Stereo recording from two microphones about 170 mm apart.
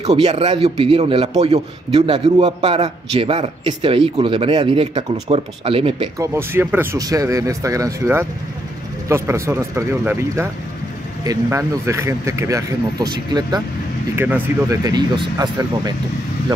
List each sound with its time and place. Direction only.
0.0 s a man's voice: 40° right (ahead or behind)
6.1 s speech: 15° right (ahead or behind)
14.1 s speech: 10° right (ahead or behind)